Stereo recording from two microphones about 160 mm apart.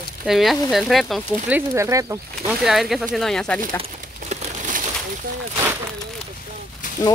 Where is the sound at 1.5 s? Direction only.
15° right (ahead or behind).